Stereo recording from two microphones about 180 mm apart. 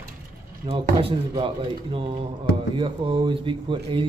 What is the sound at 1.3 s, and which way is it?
Speech, 30° right (ahead or behind).